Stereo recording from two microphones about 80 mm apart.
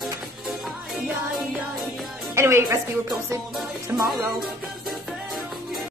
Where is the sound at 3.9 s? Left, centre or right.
Right.